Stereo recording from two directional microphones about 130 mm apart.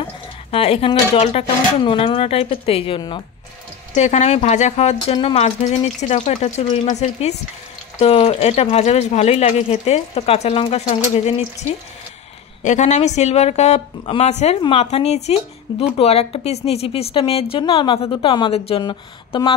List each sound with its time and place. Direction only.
0.0 s a sound: 45° left (ahead or behind)
1.9 s speech: 45° left (ahead or behind)
3.9 s speech: 60° left (ahead or behind)
8.0 s speech: 50° left (ahead or behind)
12.6 s speech: 65° left (ahead or behind); by 19.5 s 35° left (ahead or behind)